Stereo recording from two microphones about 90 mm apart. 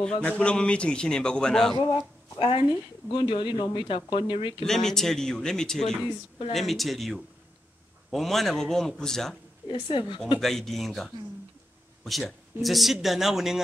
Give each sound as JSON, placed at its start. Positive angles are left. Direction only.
{"t": 0.0, "sound": "a man's voice", "side_deg": 15}
{"t": 2.3, "sound": "a woman's voice", "side_deg": 70}
{"t": 3.8, "sound": "speech", "side_deg": 75}
{"t": 4.6, "sound": "speech", "side_deg": 5}
{"t": 9.7, "sound": "speech", "side_deg": 70}
{"t": 10.4, "sound": "speech", "side_deg": 0}